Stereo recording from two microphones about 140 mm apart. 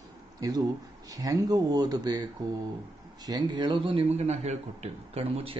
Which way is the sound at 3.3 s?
30° right (ahead or behind).